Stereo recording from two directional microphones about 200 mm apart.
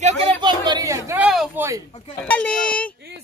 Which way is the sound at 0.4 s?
20° right (ahead or behind).